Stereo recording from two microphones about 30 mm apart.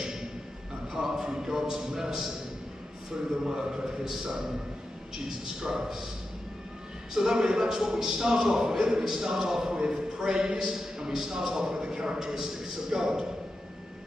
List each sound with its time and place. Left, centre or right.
0.0 s a sound: centre
0.9 s a man's voice: centre
3.4 s a man's voice: right
5.6 s a man's voice: right
7.2 s a man's voice: right